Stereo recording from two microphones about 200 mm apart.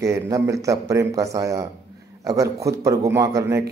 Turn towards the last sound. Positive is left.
turn(degrees=-15)  # may be behind; listen again after turning